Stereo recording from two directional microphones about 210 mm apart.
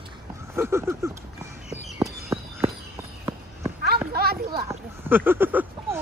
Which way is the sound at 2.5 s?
15° right (ahead or behind).